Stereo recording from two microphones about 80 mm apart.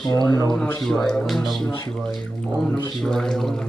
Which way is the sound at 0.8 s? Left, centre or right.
Centre.